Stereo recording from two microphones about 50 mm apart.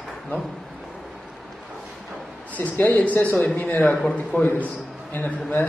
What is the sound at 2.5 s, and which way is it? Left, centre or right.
Speech, left.